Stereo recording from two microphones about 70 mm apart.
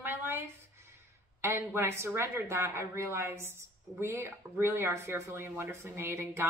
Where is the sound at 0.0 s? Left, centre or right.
Right.